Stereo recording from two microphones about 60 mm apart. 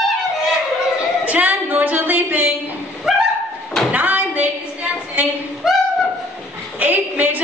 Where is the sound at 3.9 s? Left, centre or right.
Right.